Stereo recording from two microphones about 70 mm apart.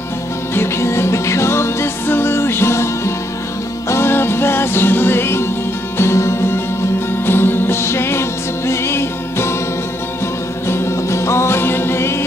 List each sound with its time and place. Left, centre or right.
0.6 s music: left
3.9 s music: left
10.7 s music: left